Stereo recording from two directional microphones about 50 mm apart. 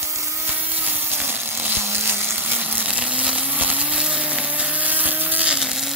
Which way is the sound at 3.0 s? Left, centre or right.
Right.